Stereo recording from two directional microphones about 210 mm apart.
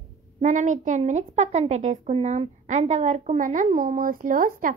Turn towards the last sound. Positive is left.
turn(degrees=-40)  # may be behind; listen again after turning